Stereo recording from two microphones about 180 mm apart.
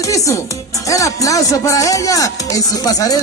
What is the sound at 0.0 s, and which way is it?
Music, 20° left (ahead or behind).